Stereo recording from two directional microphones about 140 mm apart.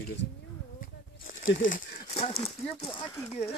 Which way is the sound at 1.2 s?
80° left.